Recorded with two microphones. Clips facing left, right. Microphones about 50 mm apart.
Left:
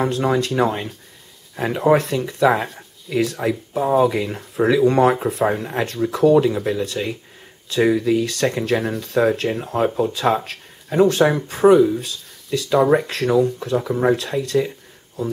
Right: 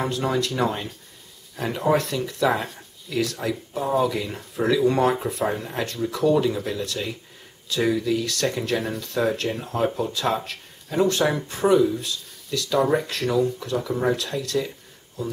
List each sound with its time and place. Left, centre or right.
0.0 s speech: centre